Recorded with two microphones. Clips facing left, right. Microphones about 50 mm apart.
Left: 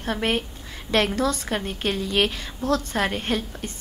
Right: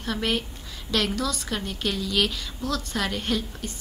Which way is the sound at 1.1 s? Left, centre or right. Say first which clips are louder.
Left 4 dB; left.